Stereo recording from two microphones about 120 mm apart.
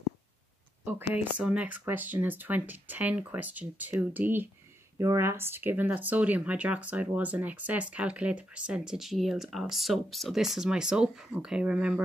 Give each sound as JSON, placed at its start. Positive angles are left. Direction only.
{"t": 0.8, "sound": "speech", "side_deg": -20}